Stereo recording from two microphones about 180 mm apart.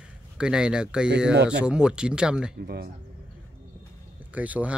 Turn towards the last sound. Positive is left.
turn(degrees=-10)  # may be behind; listen again after turning